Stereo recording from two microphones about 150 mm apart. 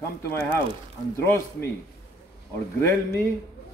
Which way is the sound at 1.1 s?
15° left (ahead or behind).